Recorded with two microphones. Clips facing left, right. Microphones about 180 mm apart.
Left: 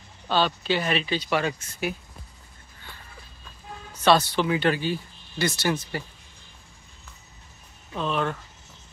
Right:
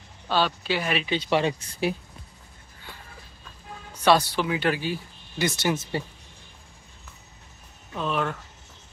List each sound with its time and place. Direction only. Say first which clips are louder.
0.3 s speech: left 1 dB; 10° right (ahead or behind)
1.1 s speech: right 2 dB; 25° right (ahead or behind)
4.0 s speech: even; 10° right (ahead or behind)
7.9 s speech: left 1 dB; 5° right (ahead or behind)